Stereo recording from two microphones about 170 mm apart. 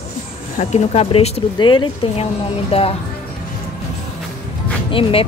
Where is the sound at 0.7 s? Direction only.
35° left (ahead or behind).